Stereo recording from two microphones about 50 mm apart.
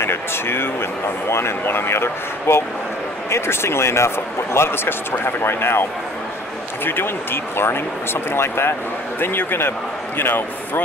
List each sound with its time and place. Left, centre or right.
0.0 s a sound: left
1.3 s speech: left
4.6 s speech: left